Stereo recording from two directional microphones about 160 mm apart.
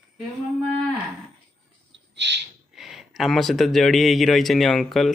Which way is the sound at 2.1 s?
90° right.